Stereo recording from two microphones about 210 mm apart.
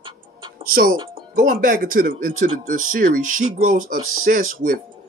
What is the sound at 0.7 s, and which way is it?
Speech, 45° right (ahead or behind).